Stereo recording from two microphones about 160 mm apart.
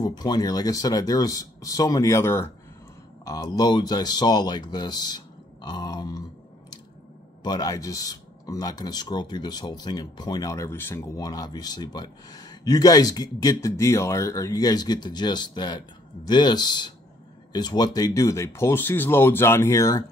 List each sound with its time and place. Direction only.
0.0 s speech: 25° left (ahead or behind)
7.4 s speech: 25° left (ahead or behind)